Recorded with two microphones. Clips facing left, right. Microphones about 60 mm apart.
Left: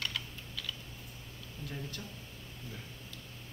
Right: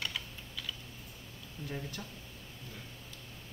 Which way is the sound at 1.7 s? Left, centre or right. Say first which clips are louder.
Right 2 dB; centre.